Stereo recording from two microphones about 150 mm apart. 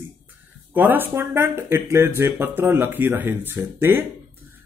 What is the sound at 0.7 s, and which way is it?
Speech, 15° right (ahead or behind).